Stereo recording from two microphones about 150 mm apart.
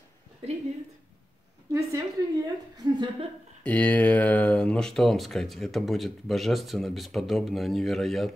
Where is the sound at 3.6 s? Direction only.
10° left (ahead or behind).